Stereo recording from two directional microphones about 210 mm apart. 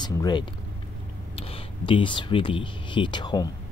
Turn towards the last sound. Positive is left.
turn(degrees=20)  # may be behind; listen again after turning